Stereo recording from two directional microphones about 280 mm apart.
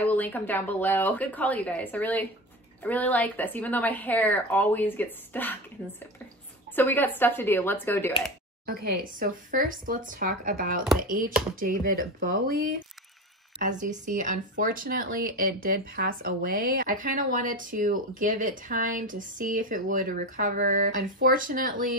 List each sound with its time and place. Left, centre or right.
0.1 s a woman's voice: centre
6.7 s a woman's voice: centre
8.6 s speech: right